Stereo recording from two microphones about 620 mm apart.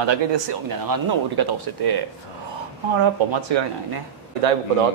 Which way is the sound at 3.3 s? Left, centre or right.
Right.